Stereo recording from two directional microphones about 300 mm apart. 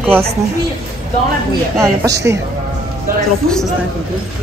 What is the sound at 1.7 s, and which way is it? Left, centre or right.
Speech, centre.